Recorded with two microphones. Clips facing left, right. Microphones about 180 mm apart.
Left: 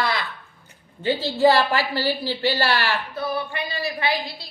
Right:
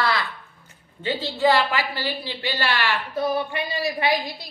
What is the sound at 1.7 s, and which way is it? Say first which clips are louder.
A woman's voice: left 4 dB; 40° left (ahead or behind).